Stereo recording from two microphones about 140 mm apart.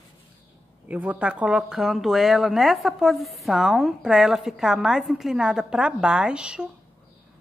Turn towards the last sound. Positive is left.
turn(degrees=-5)  # may be behind; listen again after turning